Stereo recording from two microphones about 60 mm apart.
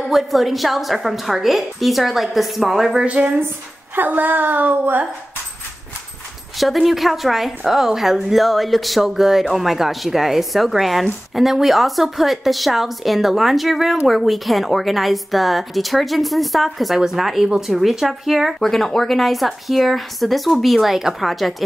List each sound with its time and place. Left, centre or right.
0.1 s a woman's voice: centre
3.9 s a woman's voice: right
6.6 s a woman's voice: centre